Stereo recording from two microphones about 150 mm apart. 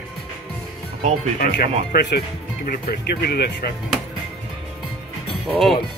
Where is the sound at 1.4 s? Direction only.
90° left.